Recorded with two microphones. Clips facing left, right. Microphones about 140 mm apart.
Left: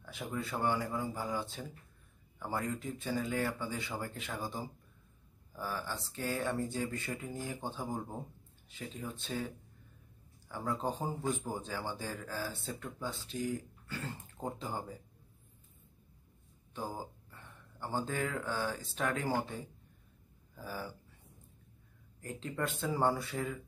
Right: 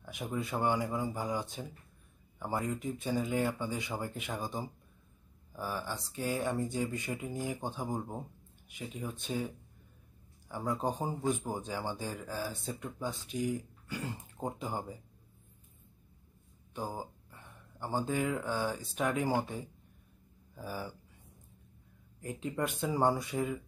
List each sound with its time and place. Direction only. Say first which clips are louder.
0.0 s a man's voice: right 2 dB; 15° right (ahead or behind)
10.5 s a man's voice: right 2 dB; 15° right (ahead or behind)
16.7 s a man's voice: right 2 dB; 15° right (ahead or behind)
22.2 s a man's voice: right 3 dB; 15° right (ahead or behind)